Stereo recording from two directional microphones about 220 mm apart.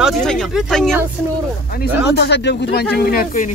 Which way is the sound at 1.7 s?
50° left (ahead or behind).